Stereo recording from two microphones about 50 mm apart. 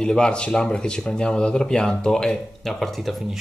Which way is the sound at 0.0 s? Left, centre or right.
Centre.